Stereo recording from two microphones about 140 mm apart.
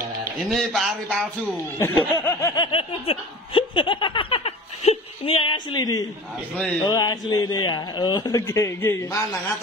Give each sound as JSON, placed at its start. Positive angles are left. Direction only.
{"t": 0.5, "sound": "speech", "side_deg": 0}
{"t": 1.8, "sound": "snicker", "side_deg": 20}
{"t": 6.9, "sound": "a man's voice", "side_deg": 25}